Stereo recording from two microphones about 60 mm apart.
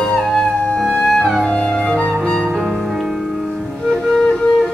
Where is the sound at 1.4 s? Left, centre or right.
Centre.